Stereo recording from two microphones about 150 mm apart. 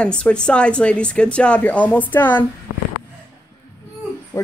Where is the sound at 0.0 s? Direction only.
5° left (ahead or behind).